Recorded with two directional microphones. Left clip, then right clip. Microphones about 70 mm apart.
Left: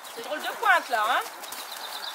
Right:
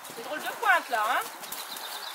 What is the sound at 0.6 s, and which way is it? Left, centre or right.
Speech, left.